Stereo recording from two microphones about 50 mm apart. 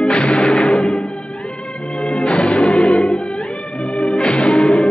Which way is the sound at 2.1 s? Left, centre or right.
Centre.